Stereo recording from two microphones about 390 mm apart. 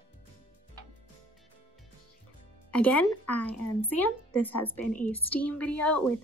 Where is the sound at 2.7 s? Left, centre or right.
Centre.